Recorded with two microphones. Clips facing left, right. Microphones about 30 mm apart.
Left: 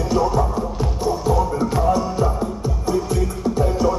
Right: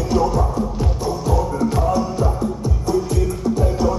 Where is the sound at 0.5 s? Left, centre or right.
Centre.